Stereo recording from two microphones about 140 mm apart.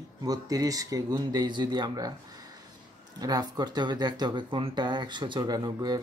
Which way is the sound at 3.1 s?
30° right (ahead or behind).